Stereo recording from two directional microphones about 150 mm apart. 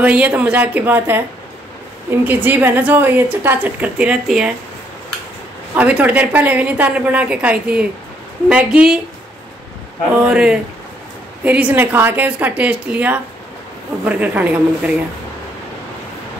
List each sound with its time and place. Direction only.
0.0 s a woman's voice: 10° right (ahead or behind)
2.2 s a woman's voice: 10° right (ahead or behind)
5.8 s a woman's voice: 10° right (ahead or behind)
10.1 s a woman's voice: 5° right (ahead or behind)